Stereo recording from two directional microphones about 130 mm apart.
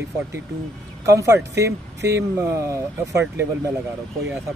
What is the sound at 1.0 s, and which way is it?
Speech, 25° right (ahead or behind).